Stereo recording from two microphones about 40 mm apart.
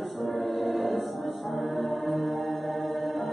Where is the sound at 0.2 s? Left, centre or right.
Centre.